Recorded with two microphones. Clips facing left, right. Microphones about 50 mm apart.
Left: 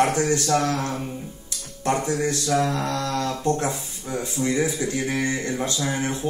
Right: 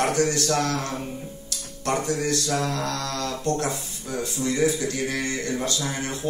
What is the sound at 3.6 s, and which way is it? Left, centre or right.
A man's voice, left.